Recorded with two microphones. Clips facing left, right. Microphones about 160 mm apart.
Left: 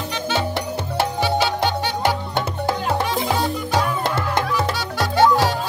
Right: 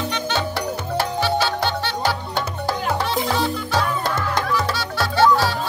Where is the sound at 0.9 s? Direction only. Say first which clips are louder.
Left 1 dB; 15° left (ahead or behind).